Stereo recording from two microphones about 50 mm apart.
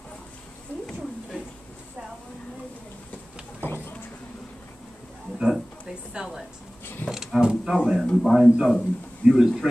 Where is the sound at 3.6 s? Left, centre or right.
Left.